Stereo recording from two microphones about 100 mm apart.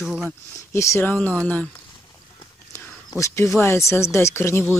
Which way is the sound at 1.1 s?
15° left (ahead or behind).